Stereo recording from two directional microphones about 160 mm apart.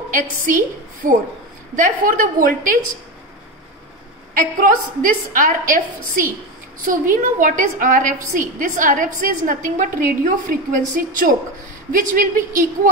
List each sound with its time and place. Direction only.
0.1 s a woman's voice: 55° right (ahead or behind)
4.3 s a woman's voice: 60° right (ahead or behind)